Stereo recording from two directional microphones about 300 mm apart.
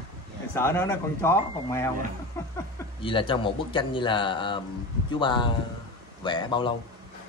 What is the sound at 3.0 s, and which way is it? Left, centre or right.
Speech, centre.